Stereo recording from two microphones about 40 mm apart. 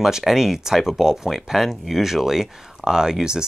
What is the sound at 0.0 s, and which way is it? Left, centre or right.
Speech, centre.